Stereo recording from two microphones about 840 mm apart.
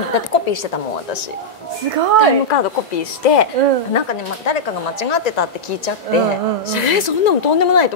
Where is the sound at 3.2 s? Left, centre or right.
Left.